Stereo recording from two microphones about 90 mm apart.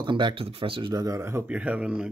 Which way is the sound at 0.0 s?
60° right (ahead or behind).